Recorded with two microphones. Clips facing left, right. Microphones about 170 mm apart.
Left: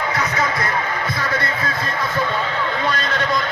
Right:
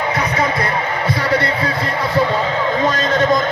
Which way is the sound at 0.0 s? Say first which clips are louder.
Right 3 dB; 30° right (ahead or behind).